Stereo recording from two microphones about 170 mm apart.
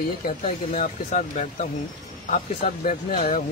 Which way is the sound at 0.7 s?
45° left (ahead or behind).